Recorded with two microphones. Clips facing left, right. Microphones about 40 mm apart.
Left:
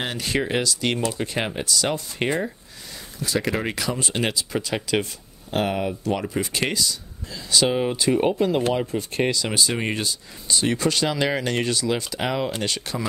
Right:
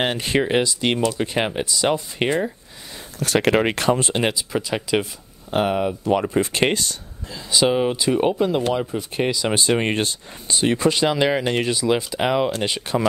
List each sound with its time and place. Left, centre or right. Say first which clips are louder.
0.0 s speech: right 5 dB; right
0.4 s speech: right 4 dB; right
2.2 s speech: right 3 dB; centre
3.2 s speech: right 7 dB; right
3.6 s speech: right 7 dB; right
4.1 s speech: right 3 dB; centre
6.2 s speech: right 5 dB; right
7.3 s speech: right 3 dB; centre
9.5 s speech: right 4 dB; right
10.6 s speech: right 4 dB; right